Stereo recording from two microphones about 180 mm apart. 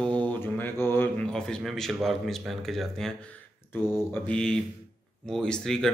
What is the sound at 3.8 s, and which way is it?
Speech, 10° left (ahead or behind).